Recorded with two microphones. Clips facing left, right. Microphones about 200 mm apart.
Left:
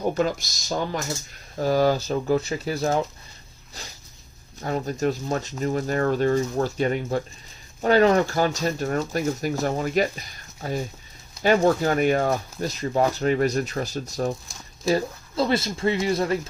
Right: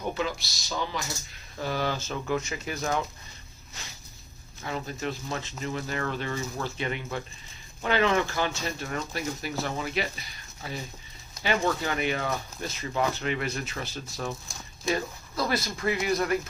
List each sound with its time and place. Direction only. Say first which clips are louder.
0.0 s speech: left 7 dB; 45° left (ahead or behind)
4.6 s speech: left 8 dB; 45° left (ahead or behind)
15.3 s speech: left 6 dB; 25° left (ahead or behind)